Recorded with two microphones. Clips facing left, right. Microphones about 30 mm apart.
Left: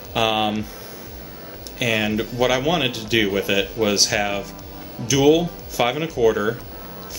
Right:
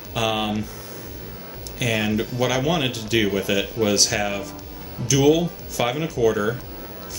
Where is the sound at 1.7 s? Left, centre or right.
Centre.